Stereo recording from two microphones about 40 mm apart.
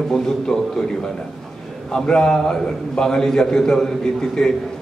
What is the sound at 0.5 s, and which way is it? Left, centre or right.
Speech, centre.